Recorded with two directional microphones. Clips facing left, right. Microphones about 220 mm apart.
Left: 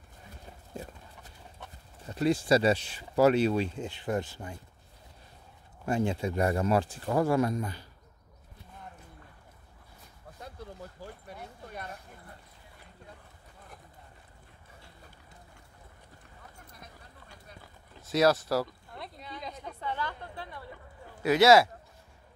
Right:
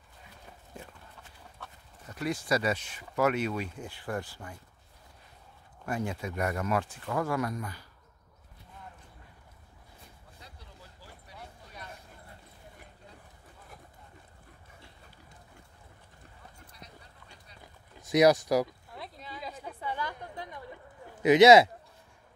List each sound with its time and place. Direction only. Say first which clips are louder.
1.6 s speech: left 1 dB; 30° left (ahead or behind)
5.9 s speech: left 5 dB; 25° left (ahead or behind)
10.4 s a sound: left 11 dB; 50° left (ahead or behind)
18.0 s speech: right 3 dB; 15° right (ahead or behind)
18.9 s a sound: even; centre (ahead or behind); by 20.6 s 15° right (ahead or behind)
21.1 s speech: right 3 dB; 20° right (ahead or behind)